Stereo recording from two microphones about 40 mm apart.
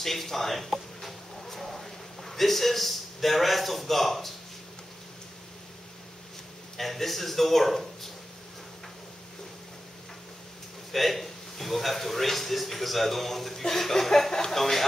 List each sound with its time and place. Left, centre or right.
0.0 s a sound: centre
6.8 s a man's voice: centre
10.9 s a man's voice: centre